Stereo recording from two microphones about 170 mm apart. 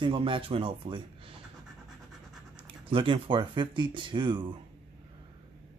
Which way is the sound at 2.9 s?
30° right (ahead or behind).